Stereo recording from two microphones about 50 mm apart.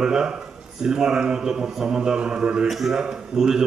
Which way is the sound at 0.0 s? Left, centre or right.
Centre.